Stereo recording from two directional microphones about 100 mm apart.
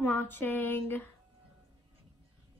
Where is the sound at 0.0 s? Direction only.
20° left (ahead or behind).